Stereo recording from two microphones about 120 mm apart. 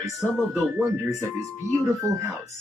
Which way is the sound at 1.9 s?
25° right (ahead or behind).